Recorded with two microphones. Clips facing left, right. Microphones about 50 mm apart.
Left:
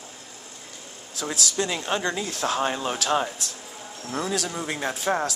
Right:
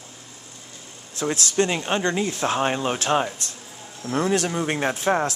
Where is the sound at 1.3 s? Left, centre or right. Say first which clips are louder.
Right 4 dB; right.